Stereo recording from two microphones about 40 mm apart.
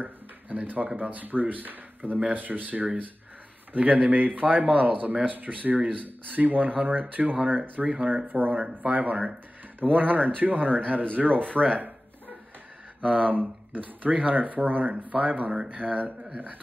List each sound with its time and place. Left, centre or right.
0.0 s speech: right
13.1 s speech: right